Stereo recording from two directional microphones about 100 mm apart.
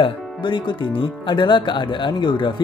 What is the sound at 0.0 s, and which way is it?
Speech, 55° left (ahead or behind).